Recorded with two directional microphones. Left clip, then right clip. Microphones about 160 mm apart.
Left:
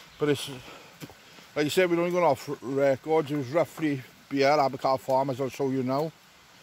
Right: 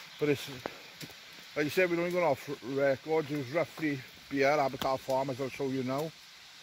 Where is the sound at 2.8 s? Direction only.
30° left (ahead or behind).